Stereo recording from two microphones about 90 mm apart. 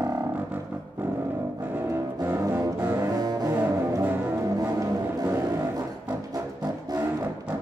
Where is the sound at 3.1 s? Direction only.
45° right (ahead or behind).